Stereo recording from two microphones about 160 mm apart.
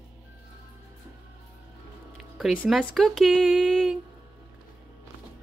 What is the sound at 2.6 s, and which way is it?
Speech, centre (ahead or behind).